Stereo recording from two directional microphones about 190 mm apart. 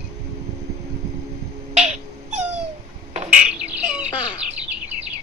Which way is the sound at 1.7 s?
35° right (ahead or behind).